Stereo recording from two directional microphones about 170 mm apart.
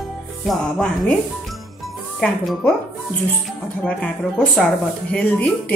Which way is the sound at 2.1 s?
Centre (ahead or behind).